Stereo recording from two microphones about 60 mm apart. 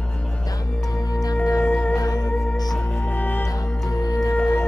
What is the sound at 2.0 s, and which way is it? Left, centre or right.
Music, left.